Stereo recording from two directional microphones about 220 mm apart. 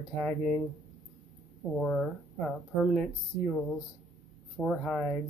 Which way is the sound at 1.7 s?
Centre (ahead or behind).